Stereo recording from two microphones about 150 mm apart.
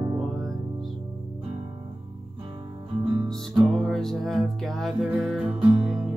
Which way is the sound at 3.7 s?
Centre (ahead or behind).